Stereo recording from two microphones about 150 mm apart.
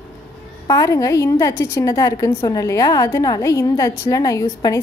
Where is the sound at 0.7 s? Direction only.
20° left (ahead or behind).